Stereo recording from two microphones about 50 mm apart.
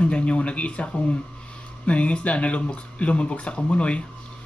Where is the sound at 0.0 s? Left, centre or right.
Left.